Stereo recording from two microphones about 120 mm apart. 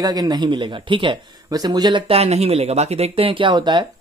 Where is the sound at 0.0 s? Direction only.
35° right (ahead or behind).